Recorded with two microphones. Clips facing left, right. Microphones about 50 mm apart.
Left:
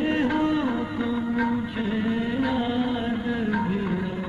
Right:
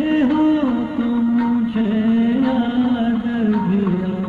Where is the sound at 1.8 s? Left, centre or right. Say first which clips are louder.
Right 10 dB; centre.